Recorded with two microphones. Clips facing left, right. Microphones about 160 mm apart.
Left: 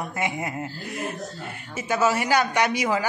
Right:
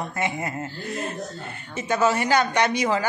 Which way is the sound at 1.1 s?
Centre (ahead or behind).